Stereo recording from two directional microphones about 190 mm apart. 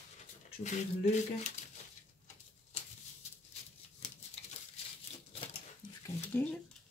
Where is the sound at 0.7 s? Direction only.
40° left (ahead or behind).